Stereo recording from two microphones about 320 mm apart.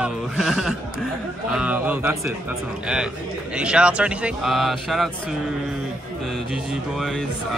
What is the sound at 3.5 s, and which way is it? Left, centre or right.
Speech, centre.